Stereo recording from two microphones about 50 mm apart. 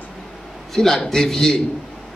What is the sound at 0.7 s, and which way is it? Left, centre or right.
Speech, centre.